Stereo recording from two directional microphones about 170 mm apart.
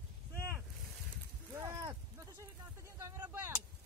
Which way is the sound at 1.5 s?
20° right (ahead or behind).